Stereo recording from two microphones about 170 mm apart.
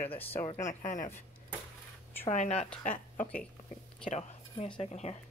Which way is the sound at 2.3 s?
40° left (ahead or behind).